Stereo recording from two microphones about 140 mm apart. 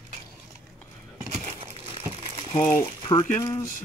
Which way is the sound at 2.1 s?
45° right (ahead or behind).